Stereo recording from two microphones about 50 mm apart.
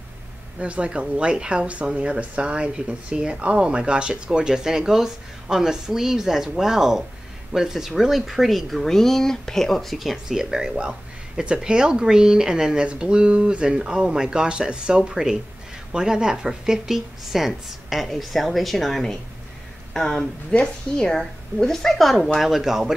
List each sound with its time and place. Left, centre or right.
0.6 s speech: right; by 10.1 s centre
10.1 s speech: centre